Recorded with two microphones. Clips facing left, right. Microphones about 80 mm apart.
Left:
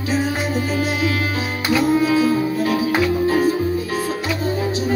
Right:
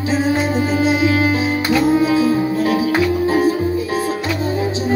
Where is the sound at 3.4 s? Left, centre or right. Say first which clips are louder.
Right 2 dB; right.